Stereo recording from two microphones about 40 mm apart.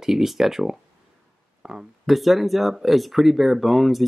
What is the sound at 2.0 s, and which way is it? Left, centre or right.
Speech, centre.